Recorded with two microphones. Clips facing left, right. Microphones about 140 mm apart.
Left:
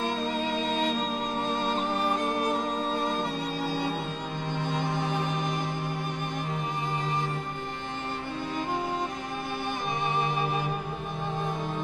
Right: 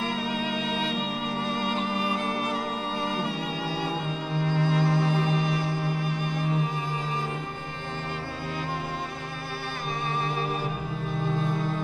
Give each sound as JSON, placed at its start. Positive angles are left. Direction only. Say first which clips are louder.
{"t": 0.6, "sound": "music", "louder": "left 1 dB", "side_deg": 40}
{"t": 4.5, "sound": "music", "louder": "right 5 dB", "side_deg": 20}